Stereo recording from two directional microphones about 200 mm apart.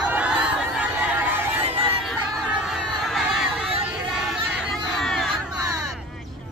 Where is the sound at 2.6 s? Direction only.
Centre (ahead or behind).